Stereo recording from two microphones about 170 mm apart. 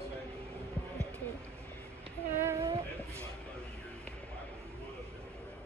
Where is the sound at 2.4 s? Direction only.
15° right (ahead or behind).